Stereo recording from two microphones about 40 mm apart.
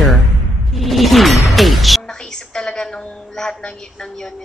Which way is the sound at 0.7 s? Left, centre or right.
Centre.